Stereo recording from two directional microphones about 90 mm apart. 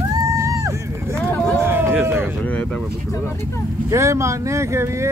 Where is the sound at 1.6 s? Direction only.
25° right (ahead or behind).